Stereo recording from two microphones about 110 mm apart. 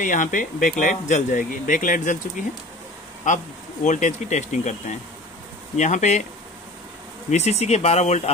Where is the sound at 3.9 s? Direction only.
90° left.